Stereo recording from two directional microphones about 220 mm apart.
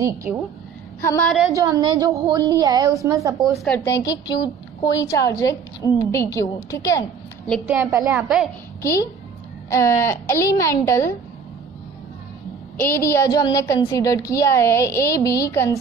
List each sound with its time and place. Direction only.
1.0 s a woman's voice: 10° left (ahead or behind)
1.5 s a woman's voice: 15° right (ahead or behind)
3.5 s a woman's voice: 5° left (ahead or behind)
7.6 s a woman's voice: 5° right (ahead or behind)
8.8 s a woman's voice: 15° left (ahead or behind)
12.7 s a woman's voice: 10° left (ahead or behind)